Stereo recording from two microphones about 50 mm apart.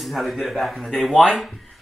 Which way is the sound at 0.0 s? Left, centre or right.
Centre.